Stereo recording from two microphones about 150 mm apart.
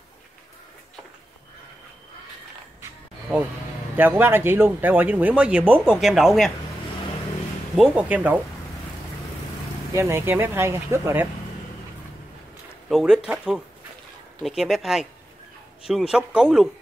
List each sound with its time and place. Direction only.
3.9 s speech: 15° right (ahead or behind)
7.7 s speech: 5° right (ahead or behind)
9.9 s speech: 15° right (ahead or behind)
12.9 s speech: 5° right (ahead or behind)